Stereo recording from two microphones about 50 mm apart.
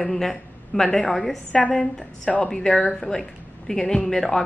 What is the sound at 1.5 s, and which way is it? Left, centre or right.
A woman's voice, left.